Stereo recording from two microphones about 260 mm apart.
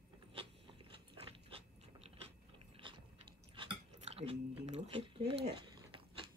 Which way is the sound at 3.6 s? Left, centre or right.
Right.